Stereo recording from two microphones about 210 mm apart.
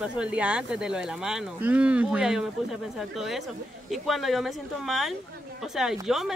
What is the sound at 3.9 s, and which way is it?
Speech, centre (ahead or behind).